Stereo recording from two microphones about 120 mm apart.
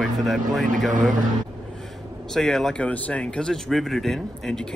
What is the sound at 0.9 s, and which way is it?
Speech, 90° right.